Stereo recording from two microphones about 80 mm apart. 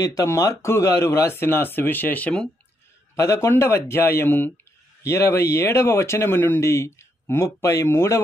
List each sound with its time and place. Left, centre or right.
0.0 s speech: left; by 2.5 s centre
3.2 s speech: left
5.0 s speech: left